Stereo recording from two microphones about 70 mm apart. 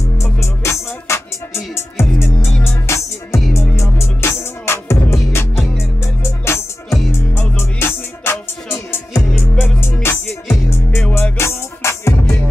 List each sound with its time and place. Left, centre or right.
0.2 s music: left